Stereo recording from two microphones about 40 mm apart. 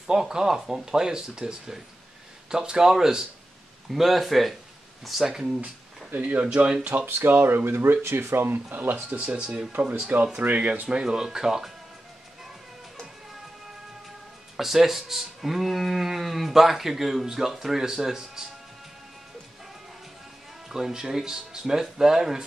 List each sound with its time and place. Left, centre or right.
0.0 s speech: centre
2.5 s speech: centre
3.9 s speech: centre
5.3 s speech: centre
6.1 s speech: right
6.4 s speech: right
7.2 s speech: right
9.2 s speech: right
10.9 s speech: right
14.6 s speech: centre
20.6 s speech: centre